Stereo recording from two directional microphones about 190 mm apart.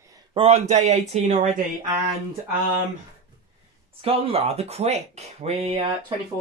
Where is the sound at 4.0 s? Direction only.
30° right (ahead or behind).